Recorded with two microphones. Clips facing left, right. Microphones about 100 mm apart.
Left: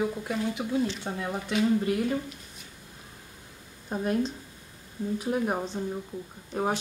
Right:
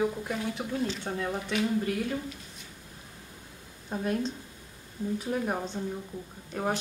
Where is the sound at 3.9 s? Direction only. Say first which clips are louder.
Left 2 dB; 15° left (ahead or behind).